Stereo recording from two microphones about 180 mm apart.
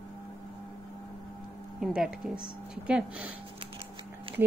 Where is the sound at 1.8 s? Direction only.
5° right (ahead or behind).